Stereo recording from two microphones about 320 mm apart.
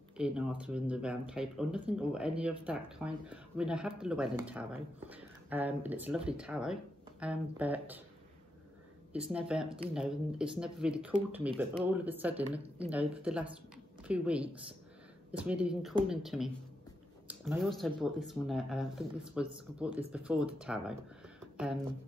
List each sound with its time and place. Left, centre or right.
0.2 s speech: centre
9.1 s speech: centre